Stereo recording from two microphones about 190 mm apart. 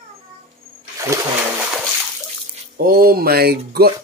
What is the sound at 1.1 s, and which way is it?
Splash, 15° right (ahead or behind).